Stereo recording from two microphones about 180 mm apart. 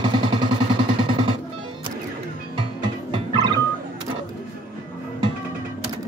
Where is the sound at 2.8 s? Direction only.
25° right (ahead or behind).